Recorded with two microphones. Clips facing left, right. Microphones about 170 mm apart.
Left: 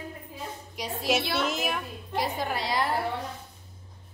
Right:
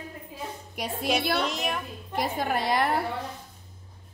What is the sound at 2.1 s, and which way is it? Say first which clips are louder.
Speech: right 2 dB; 50° right (ahead or behind).